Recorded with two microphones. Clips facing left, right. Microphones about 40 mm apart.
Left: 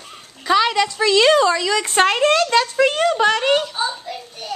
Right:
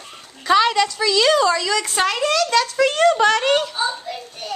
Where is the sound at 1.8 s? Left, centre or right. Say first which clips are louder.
Left 4 dB; left.